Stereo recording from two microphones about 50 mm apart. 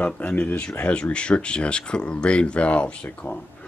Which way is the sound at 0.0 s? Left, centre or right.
Left.